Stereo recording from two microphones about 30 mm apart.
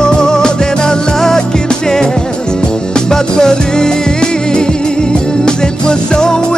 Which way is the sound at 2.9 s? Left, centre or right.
Left.